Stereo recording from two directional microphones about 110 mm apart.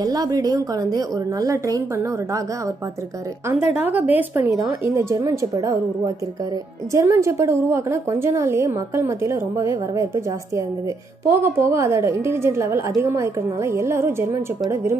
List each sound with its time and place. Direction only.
0.0 s a woman's voice: 35° right (ahead or behind)
3.5 s a woman's voice: 15° right (ahead or behind)
4.5 s a woman's voice: 30° right (ahead or behind)